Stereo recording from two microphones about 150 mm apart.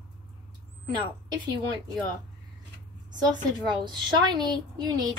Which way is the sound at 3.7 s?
30° right (ahead or behind).